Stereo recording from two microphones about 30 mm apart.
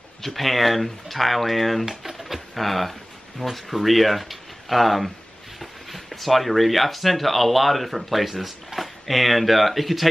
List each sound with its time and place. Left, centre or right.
0.2 s speech: centre